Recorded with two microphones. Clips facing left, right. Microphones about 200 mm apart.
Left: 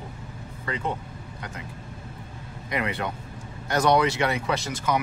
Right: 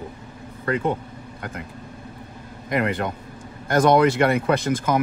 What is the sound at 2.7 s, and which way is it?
Speech, 50° right (ahead or behind).